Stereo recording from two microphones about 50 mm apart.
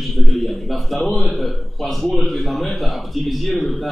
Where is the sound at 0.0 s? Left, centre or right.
Centre.